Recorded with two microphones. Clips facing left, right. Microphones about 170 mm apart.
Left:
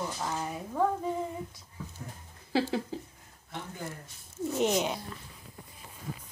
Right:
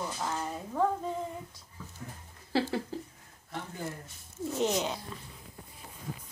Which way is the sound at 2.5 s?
15° left (ahead or behind).